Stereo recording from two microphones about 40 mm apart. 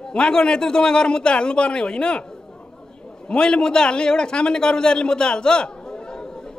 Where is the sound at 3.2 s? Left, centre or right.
Left.